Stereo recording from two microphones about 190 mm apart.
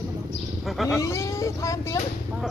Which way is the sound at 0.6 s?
Centre (ahead or behind).